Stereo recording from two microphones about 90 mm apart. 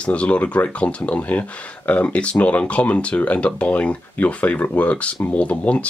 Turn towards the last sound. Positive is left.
turn(degrees=15)  # may be behind; listen again after turning